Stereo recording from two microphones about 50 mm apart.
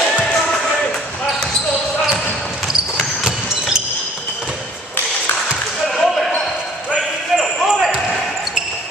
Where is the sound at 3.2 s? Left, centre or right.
Centre.